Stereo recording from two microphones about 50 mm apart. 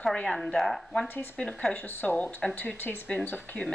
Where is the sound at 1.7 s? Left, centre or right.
Left.